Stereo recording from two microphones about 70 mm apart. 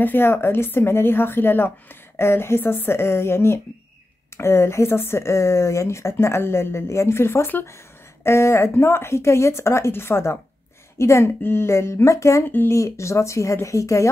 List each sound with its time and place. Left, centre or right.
0.0 s speech: left
12.4 s speech: left
12.7 s speech: left